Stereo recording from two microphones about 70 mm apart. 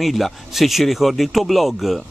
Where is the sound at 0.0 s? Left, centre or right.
Centre.